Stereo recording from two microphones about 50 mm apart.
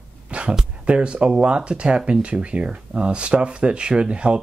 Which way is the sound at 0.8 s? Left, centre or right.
Right.